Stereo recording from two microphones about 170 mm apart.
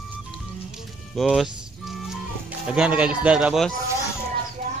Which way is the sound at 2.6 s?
5° right (ahead or behind).